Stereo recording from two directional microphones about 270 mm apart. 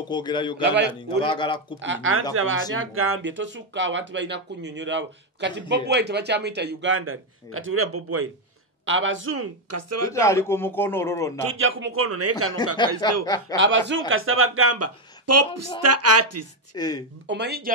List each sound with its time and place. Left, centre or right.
0.1 s a man's voice: centre
0.7 s speech: right
1.2 s a man's voice: centre
1.8 s speech: right
10.1 s a man's voice: centre
11.3 s speech: right
12.7 s a man's voice: centre
13.8 s speech: right
16.7 s a man's voice: centre
17.3 s speech: right